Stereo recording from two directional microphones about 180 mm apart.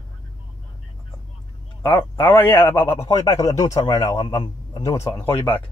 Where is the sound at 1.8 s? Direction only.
10° left (ahead or behind).